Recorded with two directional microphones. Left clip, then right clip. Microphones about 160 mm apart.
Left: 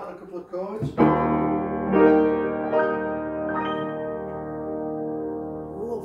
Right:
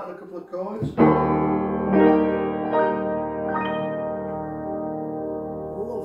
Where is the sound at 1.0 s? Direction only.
25° left (ahead or behind).